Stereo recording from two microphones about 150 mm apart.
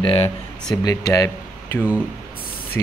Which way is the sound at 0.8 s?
25° left (ahead or behind).